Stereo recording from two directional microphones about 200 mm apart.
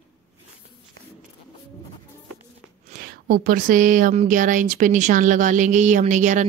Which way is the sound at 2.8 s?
45° right (ahead or behind).